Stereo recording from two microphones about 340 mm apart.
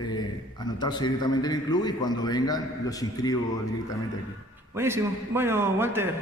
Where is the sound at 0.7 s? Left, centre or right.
Centre.